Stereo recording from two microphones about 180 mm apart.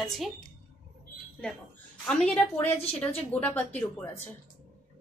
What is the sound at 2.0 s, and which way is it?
A woman's voice, 5° left (ahead or behind).